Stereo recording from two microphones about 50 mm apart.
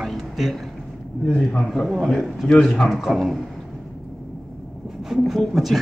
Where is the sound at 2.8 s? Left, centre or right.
Centre.